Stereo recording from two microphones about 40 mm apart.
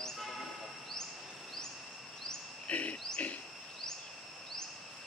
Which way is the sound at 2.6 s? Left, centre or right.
Left.